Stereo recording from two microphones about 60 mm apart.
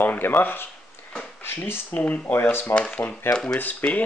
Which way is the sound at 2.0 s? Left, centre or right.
Left.